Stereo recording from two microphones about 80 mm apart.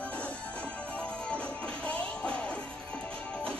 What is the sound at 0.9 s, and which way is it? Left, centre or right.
Music, centre.